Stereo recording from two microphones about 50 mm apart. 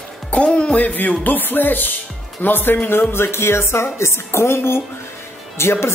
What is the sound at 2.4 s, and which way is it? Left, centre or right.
Speech, left.